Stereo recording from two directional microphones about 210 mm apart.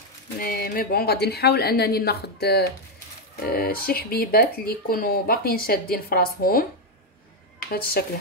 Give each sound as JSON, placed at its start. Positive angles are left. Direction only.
{"t": 0.4, "sound": "speech", "side_deg": 45}
{"t": 7.7, "sound": "speech", "side_deg": 45}